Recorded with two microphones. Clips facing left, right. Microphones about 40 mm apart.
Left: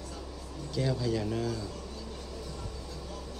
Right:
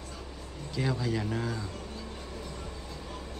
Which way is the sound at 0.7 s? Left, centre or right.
Right.